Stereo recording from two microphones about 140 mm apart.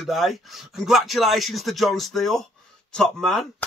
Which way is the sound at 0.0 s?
Centre (ahead or behind).